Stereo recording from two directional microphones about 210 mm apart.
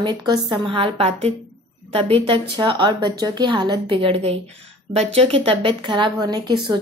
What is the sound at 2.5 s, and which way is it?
Speech, 20° right (ahead or behind).